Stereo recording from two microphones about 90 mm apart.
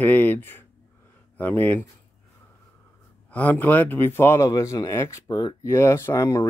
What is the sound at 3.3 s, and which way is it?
Speech, 15° left (ahead or behind).